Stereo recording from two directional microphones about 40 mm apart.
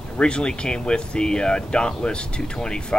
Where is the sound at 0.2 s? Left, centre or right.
Left.